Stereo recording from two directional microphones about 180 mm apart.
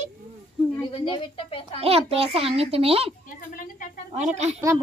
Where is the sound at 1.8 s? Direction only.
35° right (ahead or behind).